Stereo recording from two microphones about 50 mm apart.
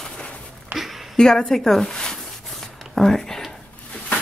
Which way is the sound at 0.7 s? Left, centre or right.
Right.